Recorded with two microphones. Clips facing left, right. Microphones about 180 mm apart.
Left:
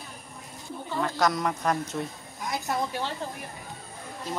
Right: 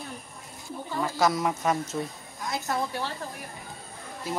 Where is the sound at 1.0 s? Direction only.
5° right (ahead or behind).